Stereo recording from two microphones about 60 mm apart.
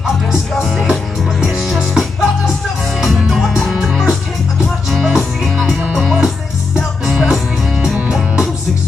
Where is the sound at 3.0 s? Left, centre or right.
Centre.